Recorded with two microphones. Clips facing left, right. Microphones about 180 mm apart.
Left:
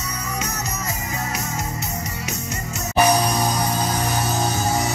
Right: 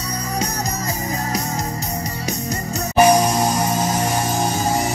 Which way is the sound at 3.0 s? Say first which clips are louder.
Right 4 dB; 25° right (ahead or behind).